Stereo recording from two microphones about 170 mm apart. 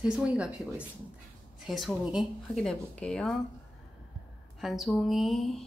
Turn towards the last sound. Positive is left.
turn(degrees=0)  # may be behind; listen again after turning